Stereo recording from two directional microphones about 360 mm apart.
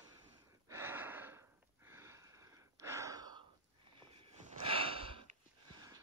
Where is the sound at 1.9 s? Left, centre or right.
Centre.